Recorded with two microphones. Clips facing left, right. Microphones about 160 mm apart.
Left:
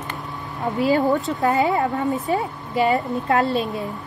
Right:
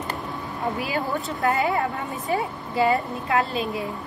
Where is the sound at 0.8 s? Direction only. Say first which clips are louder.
Left 8 dB; 25° left (ahead or behind).